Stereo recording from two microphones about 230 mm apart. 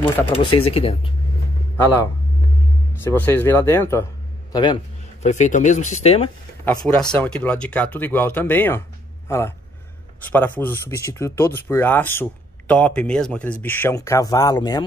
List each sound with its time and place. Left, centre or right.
0.3 s speech: left
2.9 s a man's voice: centre
5.2 s speech: left
6.6 s speech: centre